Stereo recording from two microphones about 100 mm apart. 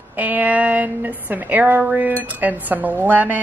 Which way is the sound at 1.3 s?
15° right (ahead or behind).